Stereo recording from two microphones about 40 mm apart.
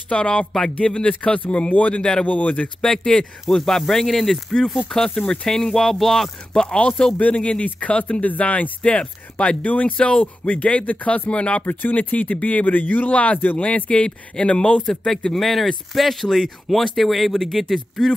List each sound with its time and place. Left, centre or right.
0.1 s speech: left
3.1 s speech: centre
5.1 s speech: left; by 6.6 s centre
7.2 s speech: left
8.8 s speech: left
9.9 s speech: left
10.2 s speech: left
11.6 s speech: left
14.8 s speech: centre